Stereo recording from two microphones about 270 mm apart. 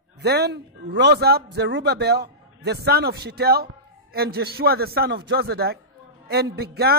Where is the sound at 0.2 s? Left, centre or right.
Right.